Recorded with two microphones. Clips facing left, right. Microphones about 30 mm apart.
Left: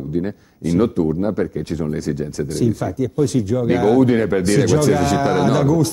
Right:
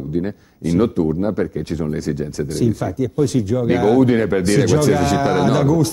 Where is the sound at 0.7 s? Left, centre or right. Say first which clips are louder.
Even; centre.